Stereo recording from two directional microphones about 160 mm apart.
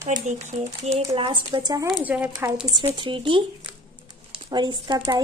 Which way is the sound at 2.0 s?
10° right (ahead or behind).